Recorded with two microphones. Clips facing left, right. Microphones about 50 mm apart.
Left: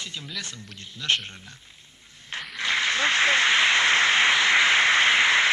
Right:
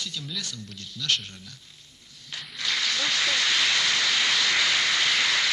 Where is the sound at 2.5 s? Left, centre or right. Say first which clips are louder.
Left 4 dB; left.